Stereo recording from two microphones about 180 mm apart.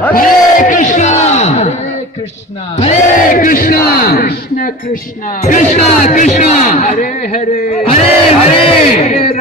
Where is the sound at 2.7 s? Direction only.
45° left (ahead or behind).